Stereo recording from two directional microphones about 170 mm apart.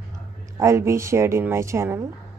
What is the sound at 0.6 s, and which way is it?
A woman's voice, 15° right (ahead or behind).